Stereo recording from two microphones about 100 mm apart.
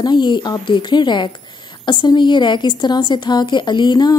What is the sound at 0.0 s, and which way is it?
Speech, 50° left (ahead or behind).